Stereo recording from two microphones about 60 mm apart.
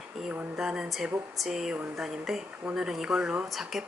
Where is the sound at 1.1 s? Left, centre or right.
Right.